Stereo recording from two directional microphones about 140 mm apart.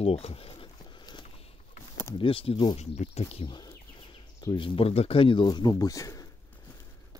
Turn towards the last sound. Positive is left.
turn(degrees=25)  # may be behind; listen again after turning